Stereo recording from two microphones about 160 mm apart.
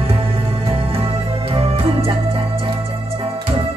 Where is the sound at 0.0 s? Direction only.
35° right (ahead or behind).